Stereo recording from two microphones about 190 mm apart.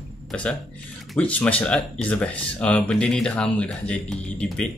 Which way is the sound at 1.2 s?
10° left (ahead or behind).